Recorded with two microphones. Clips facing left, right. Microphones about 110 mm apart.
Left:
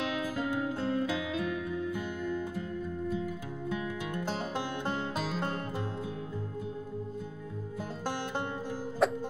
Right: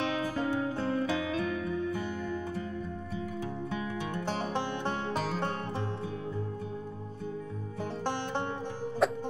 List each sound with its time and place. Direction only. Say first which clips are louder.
9.0 s music: even; centre (ahead or behind)